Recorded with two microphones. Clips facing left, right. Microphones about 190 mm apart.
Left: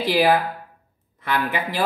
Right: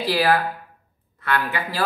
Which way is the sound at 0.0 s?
20° left (ahead or behind).